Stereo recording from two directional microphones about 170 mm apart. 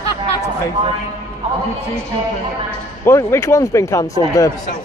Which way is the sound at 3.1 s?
15° left (ahead or behind).